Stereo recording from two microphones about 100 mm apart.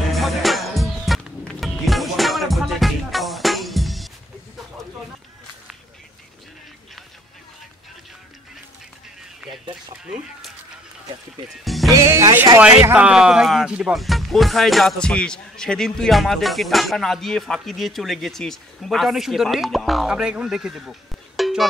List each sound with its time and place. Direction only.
0.1 s music: centre (ahead or behind)
9.4 s run: 10° right (ahead or behind)
11.4 s music: centre (ahead or behind)
11.9 s music: 30° right (ahead or behind)
12.5 s a sound: 15° right (ahead or behind)
14.0 s speech: centre (ahead or behind)